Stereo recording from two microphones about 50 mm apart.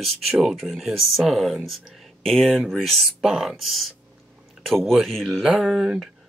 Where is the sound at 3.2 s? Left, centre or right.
Centre.